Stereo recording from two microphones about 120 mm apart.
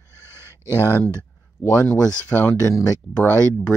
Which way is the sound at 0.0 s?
20° right (ahead or behind).